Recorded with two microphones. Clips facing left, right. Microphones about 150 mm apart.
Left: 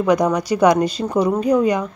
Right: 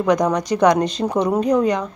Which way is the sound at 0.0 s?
5° left (ahead or behind).